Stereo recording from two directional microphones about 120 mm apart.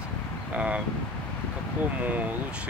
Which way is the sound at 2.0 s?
15° right (ahead or behind).